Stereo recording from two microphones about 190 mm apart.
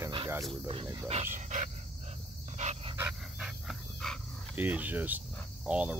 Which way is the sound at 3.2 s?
Centre (ahead or behind).